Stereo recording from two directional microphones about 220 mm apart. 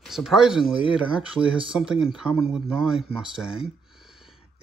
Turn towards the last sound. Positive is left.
turn(degrees=-5)  # may be behind; listen again after turning